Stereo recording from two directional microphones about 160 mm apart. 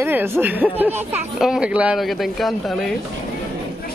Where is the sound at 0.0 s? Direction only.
15° right (ahead or behind); by 3.0 s centre (ahead or behind).